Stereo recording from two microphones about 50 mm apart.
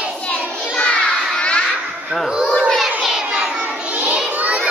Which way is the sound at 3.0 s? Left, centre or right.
Centre.